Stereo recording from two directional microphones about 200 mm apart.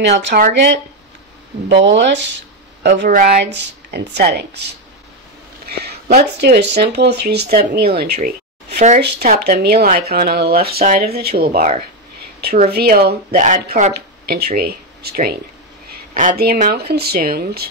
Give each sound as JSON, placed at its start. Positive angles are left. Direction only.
{"t": 0.0, "sound": "speech", "side_deg": -55}
{"t": 1.9, "sound": "speech", "side_deg": -60}
{"t": 3.1, "sound": "speech", "side_deg": -45}
{"t": 3.4, "sound": "speech", "side_deg": -60}
{"t": 5.7, "sound": "a sound", "side_deg": -55}
{"t": 6.2, "sound": "speech", "side_deg": -55}
{"t": 8.7, "sound": "speech", "side_deg": -35}
{"t": 9.3, "sound": "a woman's voice", "side_deg": -50}